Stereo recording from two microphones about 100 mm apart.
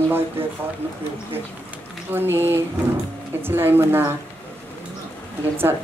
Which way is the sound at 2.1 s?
20° right (ahead or behind).